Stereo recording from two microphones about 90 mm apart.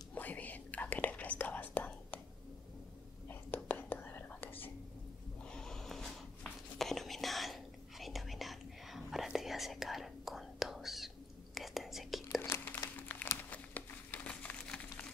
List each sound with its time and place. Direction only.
0.1 s whispering: 20° left (ahead or behind)
3.3 s whispering: 20° left (ahead or behind)
5.5 s whispering: 5° left (ahead or behind)
12.4 s a sound: 25° left (ahead or behind)
12.9 s crumpling: 20° left (ahead or behind)
13.5 s a sound: 15° left (ahead or behind)